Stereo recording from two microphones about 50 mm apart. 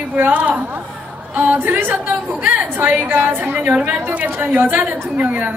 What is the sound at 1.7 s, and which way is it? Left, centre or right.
A woman's voice, right.